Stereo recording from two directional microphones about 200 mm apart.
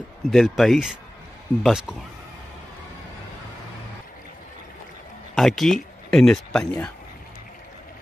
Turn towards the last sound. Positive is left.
turn(degrees=5)  # may be behind; listen again after turning